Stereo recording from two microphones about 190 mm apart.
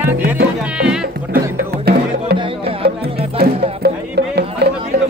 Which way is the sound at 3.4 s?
55° right (ahead or behind).